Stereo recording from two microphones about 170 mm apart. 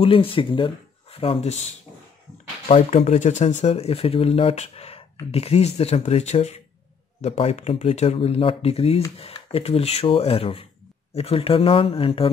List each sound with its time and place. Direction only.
0.0 s speech: 35° left (ahead or behind)